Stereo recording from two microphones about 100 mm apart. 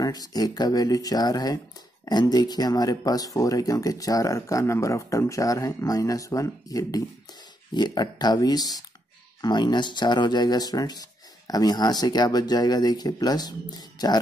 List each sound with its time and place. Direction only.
0.0 s speech: 40° left (ahead or behind)
7.7 s speech: 45° left (ahead or behind)